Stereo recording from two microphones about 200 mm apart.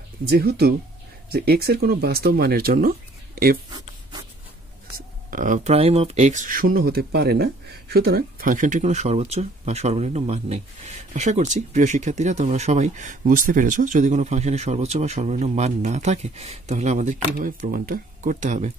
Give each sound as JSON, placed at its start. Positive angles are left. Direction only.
{"t": 0.3, "sound": "speech", "side_deg": -50}
{"t": 4.9, "sound": "speech", "side_deg": -40}